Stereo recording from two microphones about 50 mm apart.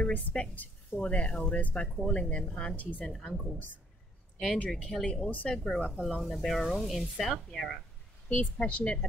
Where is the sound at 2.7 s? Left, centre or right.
Left.